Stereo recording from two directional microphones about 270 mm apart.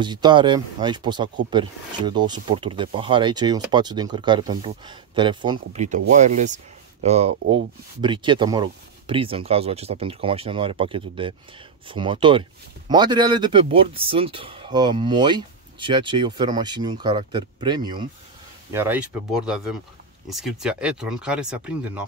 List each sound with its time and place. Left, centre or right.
0.0 s speech: centre